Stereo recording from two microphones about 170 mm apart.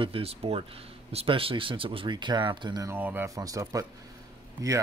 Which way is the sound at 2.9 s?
10° right (ahead or behind).